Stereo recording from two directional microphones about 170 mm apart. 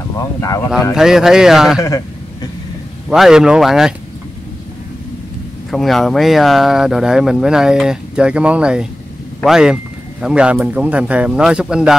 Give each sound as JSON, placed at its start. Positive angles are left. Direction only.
{"t": 0.2, "sound": "speech", "side_deg": 20}
{"t": 0.9, "sound": "speech", "side_deg": -5}
{"t": 1.8, "sound": "a sound", "side_deg": 20}
{"t": 3.1, "sound": "speech", "side_deg": -5}
{"t": 5.7, "sound": "speech", "side_deg": 0}